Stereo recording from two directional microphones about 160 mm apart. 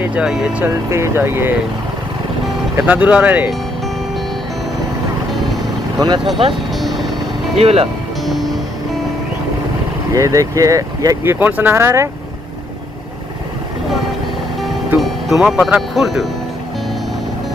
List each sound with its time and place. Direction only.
0.0 s speech: 5° right (ahead or behind)
2.8 s speech: 10° right (ahead or behind)
5.9 s speech: 25° right (ahead or behind)
6.7 s vehicle: centre (ahead or behind)
7.5 s speech: 40° right (ahead or behind)
10.1 s speech: 20° right (ahead or behind)
11.3 s speech: 10° right (ahead or behind)
15.0 s speech: centre (ahead or behind)